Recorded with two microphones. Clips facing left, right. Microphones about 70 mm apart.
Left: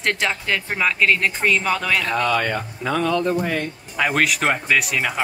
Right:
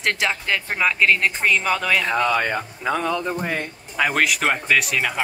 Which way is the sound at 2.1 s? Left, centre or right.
Centre.